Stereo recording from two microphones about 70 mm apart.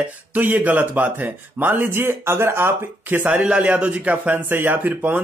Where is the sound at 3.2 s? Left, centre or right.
Centre.